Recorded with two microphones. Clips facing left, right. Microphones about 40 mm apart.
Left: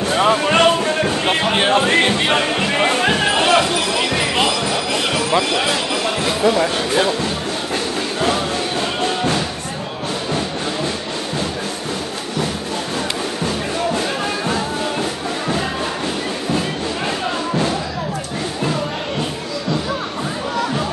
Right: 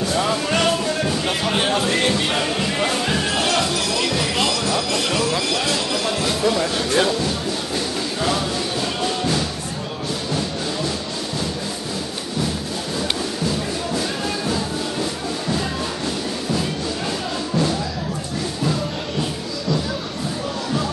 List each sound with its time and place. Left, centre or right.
0.0 s a sound: left; by 7.2 s centre
9.0 s music: left
13.9 s music: left